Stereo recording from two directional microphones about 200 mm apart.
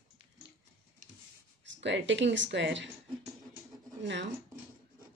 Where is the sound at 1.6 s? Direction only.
65° right (ahead or behind).